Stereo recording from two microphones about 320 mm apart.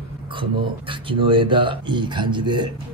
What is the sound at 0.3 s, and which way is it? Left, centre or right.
A man's voice, centre.